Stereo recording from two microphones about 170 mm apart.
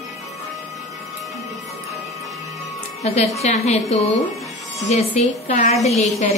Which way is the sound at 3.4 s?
40° left (ahead or behind).